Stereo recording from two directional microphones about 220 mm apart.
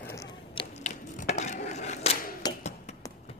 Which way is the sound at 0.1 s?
15° left (ahead or behind).